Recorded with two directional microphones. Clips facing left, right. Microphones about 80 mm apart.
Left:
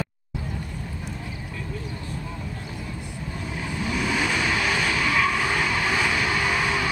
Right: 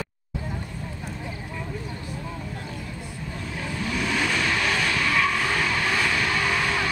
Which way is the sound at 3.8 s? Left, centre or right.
Centre.